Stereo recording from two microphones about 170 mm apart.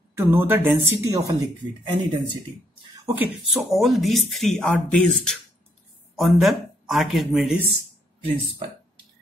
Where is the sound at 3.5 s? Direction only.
Centre (ahead or behind).